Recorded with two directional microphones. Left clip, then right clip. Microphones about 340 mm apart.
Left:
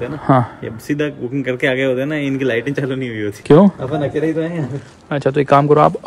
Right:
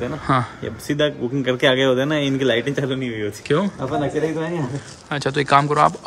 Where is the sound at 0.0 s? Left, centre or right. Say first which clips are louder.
Left 5 dB; centre.